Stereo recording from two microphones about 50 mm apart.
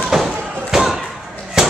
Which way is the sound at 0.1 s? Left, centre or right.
Centre.